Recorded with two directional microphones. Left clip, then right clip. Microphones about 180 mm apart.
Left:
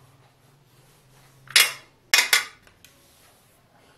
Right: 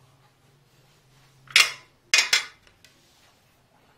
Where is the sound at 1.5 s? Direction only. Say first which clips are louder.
Even; 20° left (ahead or behind).